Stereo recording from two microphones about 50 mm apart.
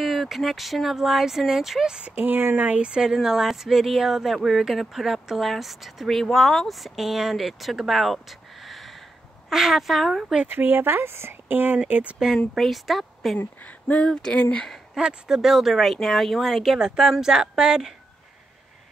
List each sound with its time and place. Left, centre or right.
0.0 s speech: centre
2.1 s speech: right; by 10.0 s centre
10.5 s speech: right
11.9 s speech: right
12.5 s speech: centre
13.4 s speech: left
15.0 s speech: centre